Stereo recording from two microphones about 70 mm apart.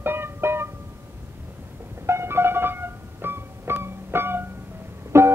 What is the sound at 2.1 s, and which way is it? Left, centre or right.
Music, right.